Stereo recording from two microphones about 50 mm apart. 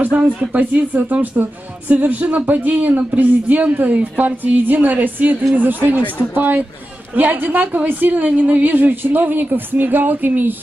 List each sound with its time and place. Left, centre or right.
0.0 s speech: right